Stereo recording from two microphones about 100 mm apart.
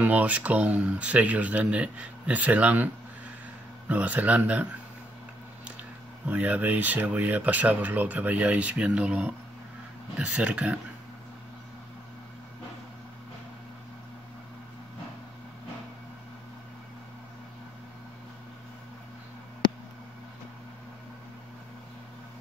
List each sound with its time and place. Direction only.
0.0 s speech: 15° right (ahead or behind)
3.9 s speech: 15° right (ahead or behind)
5.8 s speech: 15° right (ahead or behind)